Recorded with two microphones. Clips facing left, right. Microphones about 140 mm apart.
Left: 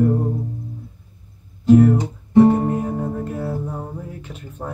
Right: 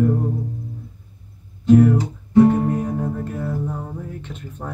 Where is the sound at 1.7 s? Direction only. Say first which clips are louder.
Left 1 dB; 10° left (ahead or behind).